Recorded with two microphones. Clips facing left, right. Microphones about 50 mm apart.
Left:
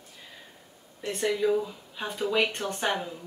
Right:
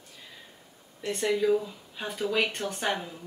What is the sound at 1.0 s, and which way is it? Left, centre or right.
A woman's voice, centre.